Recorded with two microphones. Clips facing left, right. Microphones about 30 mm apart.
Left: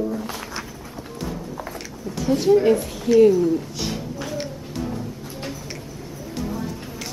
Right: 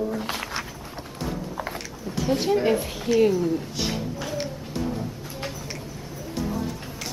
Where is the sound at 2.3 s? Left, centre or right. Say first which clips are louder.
Left 5 dB; centre.